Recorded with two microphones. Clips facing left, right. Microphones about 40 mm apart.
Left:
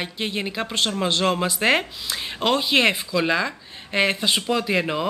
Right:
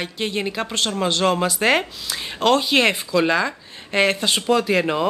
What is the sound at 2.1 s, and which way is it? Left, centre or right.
A man's voice, centre.